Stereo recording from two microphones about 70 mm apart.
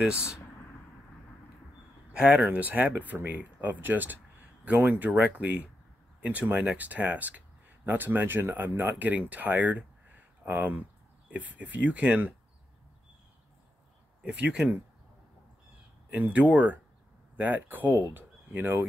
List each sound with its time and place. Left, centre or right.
0.1 s speech: centre
2.1 s speech: centre
14.2 s speech: centre
16.1 s speech: centre